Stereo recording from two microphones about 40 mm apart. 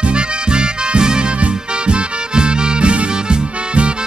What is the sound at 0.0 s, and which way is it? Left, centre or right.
Music, right.